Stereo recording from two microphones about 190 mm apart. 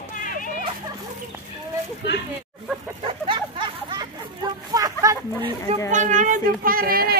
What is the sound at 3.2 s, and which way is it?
Hubbub, 25° right (ahead or behind).